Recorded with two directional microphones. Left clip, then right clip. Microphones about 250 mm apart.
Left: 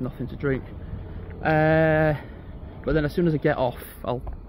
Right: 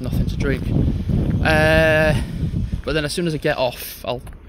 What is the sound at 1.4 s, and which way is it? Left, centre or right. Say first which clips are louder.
A man's voice: right 4 dB; centre.